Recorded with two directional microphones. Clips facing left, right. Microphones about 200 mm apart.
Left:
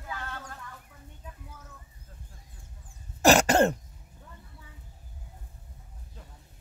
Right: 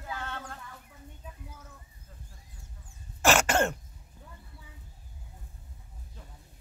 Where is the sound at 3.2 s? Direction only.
35° left (ahead or behind).